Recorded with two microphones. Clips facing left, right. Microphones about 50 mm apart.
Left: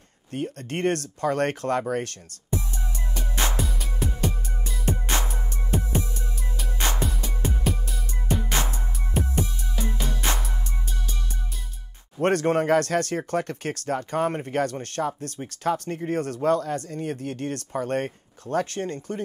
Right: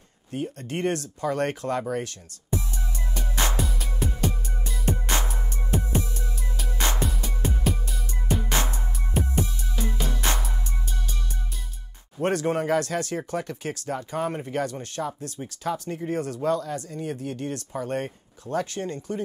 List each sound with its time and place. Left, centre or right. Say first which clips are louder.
0.3 s speech: left 1 dB; left
3.2 s music: even; centre
12.2 s speech: left 3 dB; left